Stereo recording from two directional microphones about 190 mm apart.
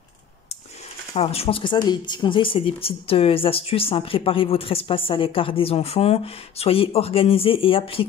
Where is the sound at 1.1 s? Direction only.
30° left (ahead or behind).